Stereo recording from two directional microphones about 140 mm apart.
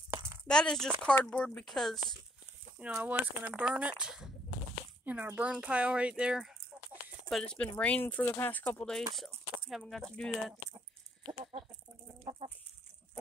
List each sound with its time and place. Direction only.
0.1 s a sound: 20° right (ahead or behind)
0.5 s speech: 5° left (ahead or behind)
2.8 s speech: 10° right (ahead or behind)
12.3 s chicken: 45° right (ahead or behind)